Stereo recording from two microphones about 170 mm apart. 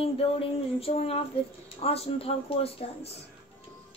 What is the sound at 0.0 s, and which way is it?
Speech, 35° left (ahead or behind).